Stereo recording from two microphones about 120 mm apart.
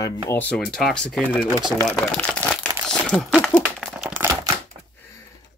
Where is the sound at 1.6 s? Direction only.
35° right (ahead or behind).